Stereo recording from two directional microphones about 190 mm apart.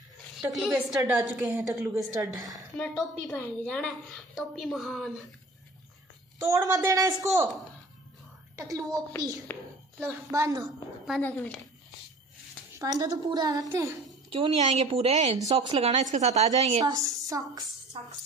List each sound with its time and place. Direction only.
0.4 s a woman's voice: centre (ahead or behind); by 2.6 s 20° right (ahead or behind)
2.8 s a woman's voice: centre (ahead or behind)
6.4 s a woman's voice: 15° right (ahead or behind)
8.5 s a woman's voice: 15° right (ahead or behind)
9.5 s a woman's voice: 10° left (ahead or behind)
10.0 s a woman's voice: 15° right (ahead or behind)
11.1 s a woman's voice: 5° left (ahead or behind)
12.7 s a woman's voice: 20° right (ahead or behind)
14.3 s a woman's voice: 25° right (ahead or behind)
16.8 s a woman's voice: 20° right (ahead or behind)
17.9 s speech: 30° right (ahead or behind)